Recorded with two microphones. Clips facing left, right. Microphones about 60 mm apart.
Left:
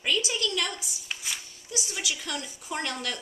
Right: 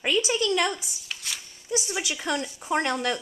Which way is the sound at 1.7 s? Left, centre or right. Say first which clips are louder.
Right 5 dB; right.